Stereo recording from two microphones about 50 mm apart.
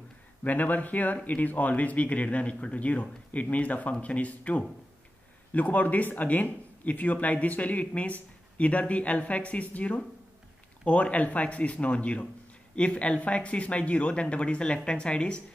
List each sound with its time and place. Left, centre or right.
0.4 s speech: left